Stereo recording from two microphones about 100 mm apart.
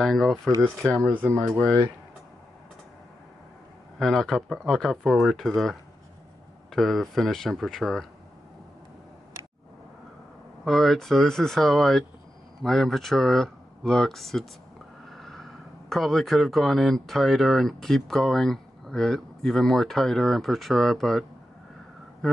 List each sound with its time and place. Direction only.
0.0 s speech: centre (ahead or behind)
1.0 s speech: 20° right (ahead or behind)
4.0 s speech: 5° left (ahead or behind)
10.6 s speech: centre (ahead or behind)
15.0 s snort: centre (ahead or behind)
15.9 s speech: 5° left (ahead or behind)